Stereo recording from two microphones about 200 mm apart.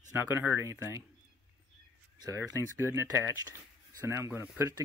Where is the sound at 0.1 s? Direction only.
15° right (ahead or behind).